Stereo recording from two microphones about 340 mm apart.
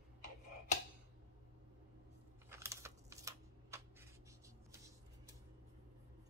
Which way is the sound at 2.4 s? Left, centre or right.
Centre.